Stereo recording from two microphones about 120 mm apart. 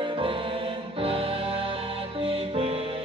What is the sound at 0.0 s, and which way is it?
Music, 50° right (ahead or behind).